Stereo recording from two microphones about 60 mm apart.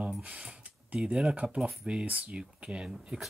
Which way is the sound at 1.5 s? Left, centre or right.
Centre.